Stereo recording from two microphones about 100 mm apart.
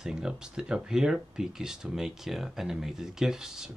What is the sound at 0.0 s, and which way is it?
Speech, 5° right (ahead or behind).